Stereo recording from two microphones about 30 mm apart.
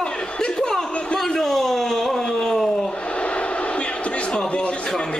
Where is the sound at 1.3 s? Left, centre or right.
Centre.